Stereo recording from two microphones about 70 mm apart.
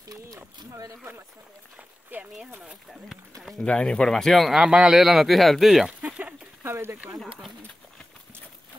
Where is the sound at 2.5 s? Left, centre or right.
Centre.